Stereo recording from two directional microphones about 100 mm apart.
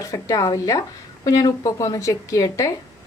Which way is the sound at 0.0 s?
35° left (ahead or behind).